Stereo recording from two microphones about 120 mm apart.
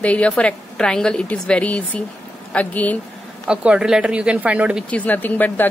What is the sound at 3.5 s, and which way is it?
Speech, 10° right (ahead or behind).